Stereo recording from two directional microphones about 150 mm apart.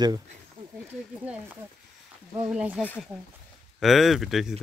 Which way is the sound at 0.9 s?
10° right (ahead or behind).